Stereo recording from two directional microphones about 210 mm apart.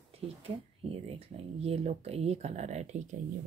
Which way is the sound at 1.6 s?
30° right (ahead or behind).